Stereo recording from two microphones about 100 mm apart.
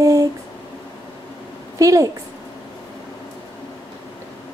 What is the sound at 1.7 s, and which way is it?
Speech, 35° right (ahead or behind).